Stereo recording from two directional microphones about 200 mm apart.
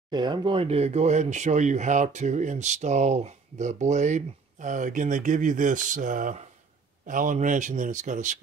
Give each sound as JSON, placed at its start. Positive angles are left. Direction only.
{"t": 0.1, "sound": "speech", "side_deg": -20}